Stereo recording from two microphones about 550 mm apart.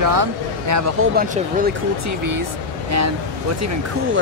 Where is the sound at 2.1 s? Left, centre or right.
Right.